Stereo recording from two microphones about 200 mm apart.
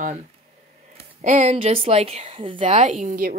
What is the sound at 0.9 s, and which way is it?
Speech, 35° right (ahead or behind).